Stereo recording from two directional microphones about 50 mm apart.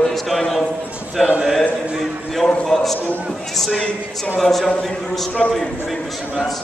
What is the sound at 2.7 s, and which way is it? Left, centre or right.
A man's voice, centre.